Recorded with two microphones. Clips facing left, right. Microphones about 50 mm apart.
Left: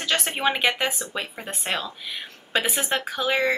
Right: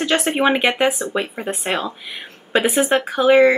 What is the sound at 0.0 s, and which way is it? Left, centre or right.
Speech, right.